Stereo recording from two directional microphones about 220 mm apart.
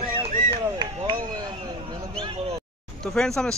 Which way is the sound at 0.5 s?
20° right (ahead or behind).